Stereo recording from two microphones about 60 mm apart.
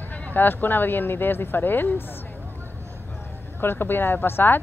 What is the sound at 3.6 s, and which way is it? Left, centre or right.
Speech, left.